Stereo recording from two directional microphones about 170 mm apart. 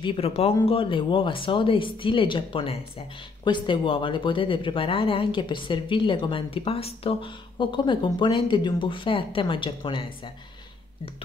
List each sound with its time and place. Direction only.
0.0 s speech: 35° left (ahead or behind)